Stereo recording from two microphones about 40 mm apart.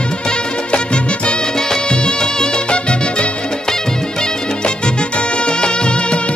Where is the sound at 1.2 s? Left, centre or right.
Centre.